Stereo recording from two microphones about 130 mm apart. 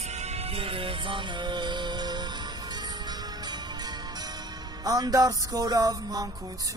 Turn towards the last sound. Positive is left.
turn(degrees=-25)  # may be behind; listen again after turning